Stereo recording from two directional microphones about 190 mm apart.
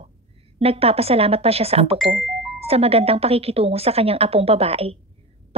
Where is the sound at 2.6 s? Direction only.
30° right (ahead or behind).